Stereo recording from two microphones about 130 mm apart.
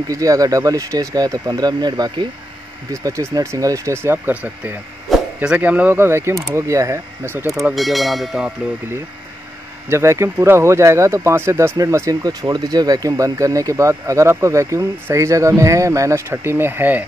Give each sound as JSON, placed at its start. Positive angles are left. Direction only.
{"t": 0.1, "sound": "speech", "side_deg": -25}
{"t": 7.7, "sound": "speech", "side_deg": 0}
{"t": 9.8, "sound": "speech", "side_deg": -20}